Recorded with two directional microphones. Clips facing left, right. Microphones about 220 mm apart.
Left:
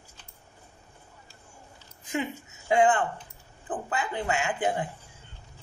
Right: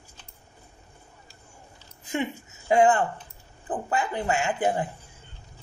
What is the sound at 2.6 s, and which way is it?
Speech, 40° right (ahead or behind).